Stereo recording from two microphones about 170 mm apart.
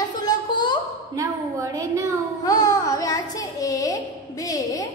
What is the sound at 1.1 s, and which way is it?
A woman's voice, 20° right (ahead or behind).